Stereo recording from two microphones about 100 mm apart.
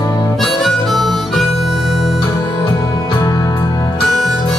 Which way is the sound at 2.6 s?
45° left (ahead or behind).